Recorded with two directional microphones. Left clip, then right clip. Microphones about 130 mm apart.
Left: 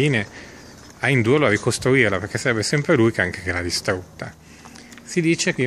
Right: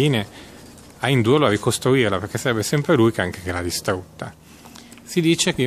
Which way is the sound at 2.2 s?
10° right (ahead or behind).